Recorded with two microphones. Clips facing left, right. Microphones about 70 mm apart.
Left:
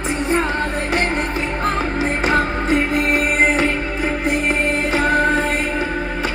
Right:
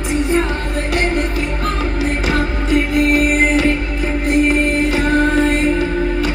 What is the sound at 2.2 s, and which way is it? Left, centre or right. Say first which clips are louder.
Music: left 1 dB; left.